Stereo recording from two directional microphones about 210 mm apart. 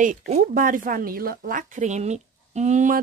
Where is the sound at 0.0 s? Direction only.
40° right (ahead or behind).